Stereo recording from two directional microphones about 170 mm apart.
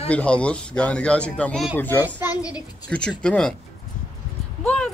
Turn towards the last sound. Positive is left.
turn(degrees=10)  # may be behind; listen again after turning